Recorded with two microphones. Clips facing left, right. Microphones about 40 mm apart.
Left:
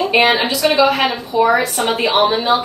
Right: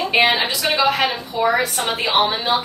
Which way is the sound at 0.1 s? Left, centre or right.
Centre.